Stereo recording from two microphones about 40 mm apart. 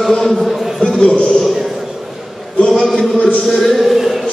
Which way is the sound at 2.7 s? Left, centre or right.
Centre.